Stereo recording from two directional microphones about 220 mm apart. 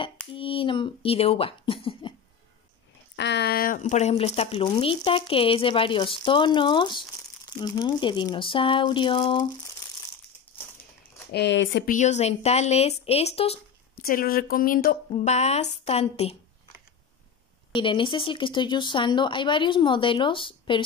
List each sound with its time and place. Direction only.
0.0 s a sound: 25° left (ahead or behind)
3.2 s speech: 50° left (ahead or behind); by 9.4 s 25° left (ahead or behind)
11.3 s speech: 55° left (ahead or behind)
11.8 s speech: 35° left (ahead or behind)
14.0 s speech: 40° left (ahead or behind)
17.7 s speech: 20° left (ahead or behind)